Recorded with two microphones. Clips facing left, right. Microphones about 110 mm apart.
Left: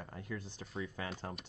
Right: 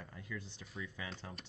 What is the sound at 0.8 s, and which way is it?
Speech, 55° left (ahead or behind).